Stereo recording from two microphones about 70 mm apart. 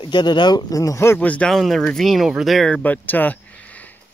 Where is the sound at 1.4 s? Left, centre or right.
Centre.